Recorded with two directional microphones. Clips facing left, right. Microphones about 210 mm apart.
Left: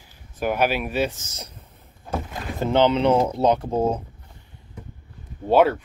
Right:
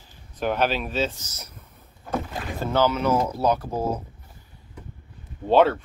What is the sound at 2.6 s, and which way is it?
Speech, 25° left (ahead or behind).